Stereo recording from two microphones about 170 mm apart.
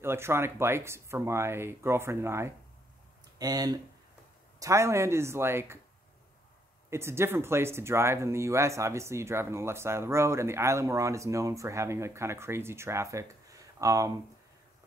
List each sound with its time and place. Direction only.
0.0 s speech: 15° right (ahead or behind)
6.9 s speech: 15° right (ahead or behind)